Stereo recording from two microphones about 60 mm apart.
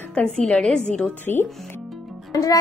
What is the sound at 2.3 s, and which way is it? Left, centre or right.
Speech, left.